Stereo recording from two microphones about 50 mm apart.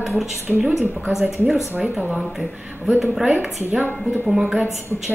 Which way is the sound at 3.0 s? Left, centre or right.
Centre.